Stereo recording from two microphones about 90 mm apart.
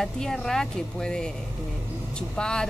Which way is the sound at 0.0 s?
5° left (ahead or behind).